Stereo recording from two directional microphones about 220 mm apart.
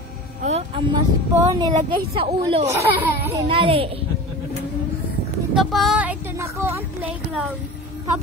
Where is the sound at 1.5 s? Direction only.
15° right (ahead or behind).